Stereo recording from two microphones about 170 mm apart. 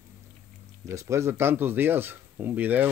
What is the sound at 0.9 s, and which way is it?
Speech, 15° right (ahead or behind).